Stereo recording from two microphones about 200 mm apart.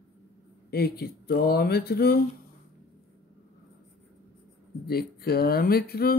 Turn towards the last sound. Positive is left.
turn(degrees=50)  # may be behind; listen again after turning